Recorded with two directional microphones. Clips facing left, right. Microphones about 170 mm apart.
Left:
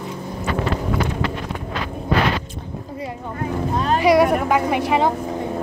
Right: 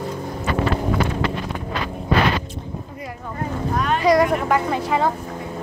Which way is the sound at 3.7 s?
30° left (ahead or behind).